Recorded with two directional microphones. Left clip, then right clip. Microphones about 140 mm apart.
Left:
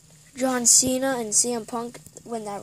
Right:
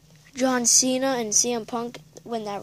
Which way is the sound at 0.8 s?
10° right (ahead or behind).